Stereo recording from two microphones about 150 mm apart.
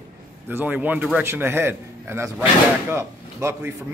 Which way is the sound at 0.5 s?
10° right (ahead or behind).